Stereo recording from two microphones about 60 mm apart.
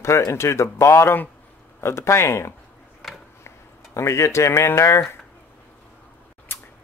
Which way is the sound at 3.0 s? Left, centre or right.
Centre.